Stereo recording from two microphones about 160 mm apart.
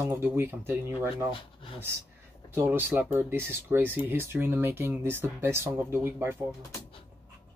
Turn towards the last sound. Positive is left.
turn(degrees=-15)  # may be behind; listen again after turning